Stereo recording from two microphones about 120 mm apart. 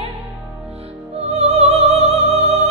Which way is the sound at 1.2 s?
60° right (ahead or behind).